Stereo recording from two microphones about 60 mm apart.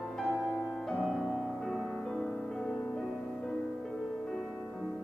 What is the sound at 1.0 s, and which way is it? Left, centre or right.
Music, centre.